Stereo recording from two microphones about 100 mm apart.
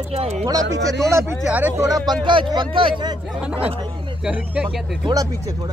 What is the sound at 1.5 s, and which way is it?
Speech, 15° right (ahead or behind).